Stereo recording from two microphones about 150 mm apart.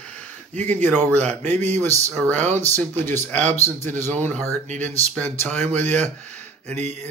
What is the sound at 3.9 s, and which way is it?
Speech, 15° left (ahead or behind).